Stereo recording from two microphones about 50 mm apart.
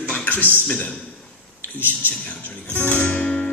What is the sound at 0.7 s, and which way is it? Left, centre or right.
Music, left.